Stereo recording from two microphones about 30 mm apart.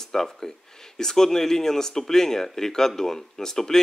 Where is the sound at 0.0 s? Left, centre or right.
Centre.